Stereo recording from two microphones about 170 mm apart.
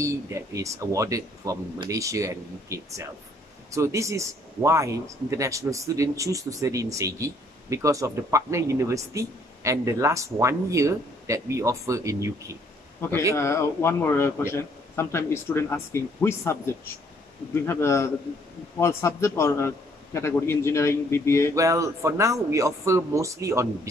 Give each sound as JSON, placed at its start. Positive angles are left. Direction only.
{"t": 0.0, "sound": "speech", "side_deg": -20}
{"t": 13.4, "sound": "a man's voice", "side_deg": 15}
{"t": 21.5, "sound": "speech", "side_deg": -20}